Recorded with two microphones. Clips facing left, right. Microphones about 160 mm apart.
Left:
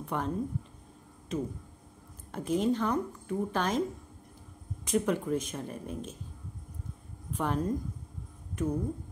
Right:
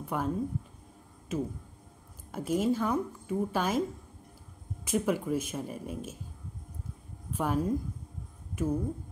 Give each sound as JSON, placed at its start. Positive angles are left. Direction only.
{"t": 0.0, "sound": "speech", "side_deg": -5}
{"t": 1.3, "sound": "a woman's voice", "side_deg": -5}
{"t": 4.8, "sound": "a woman's voice", "side_deg": -5}
{"t": 7.3, "sound": "a woman's voice", "side_deg": -5}